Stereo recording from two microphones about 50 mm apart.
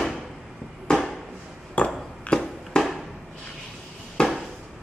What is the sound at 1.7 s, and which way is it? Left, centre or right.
Ping, left.